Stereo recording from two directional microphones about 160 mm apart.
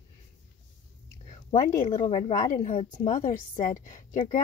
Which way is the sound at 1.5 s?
45° left (ahead or behind).